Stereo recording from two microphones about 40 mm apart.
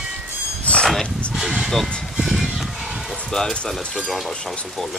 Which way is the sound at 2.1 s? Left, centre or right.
Centre.